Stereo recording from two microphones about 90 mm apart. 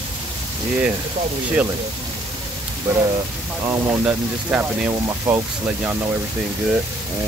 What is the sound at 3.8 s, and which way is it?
Speech, 20° right (ahead or behind).